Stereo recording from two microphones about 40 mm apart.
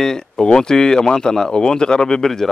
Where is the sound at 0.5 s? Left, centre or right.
Centre.